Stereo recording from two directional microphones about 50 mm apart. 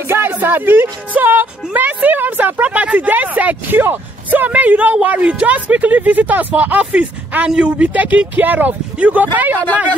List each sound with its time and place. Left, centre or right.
0.1 s speech: right
1.7 s speech: right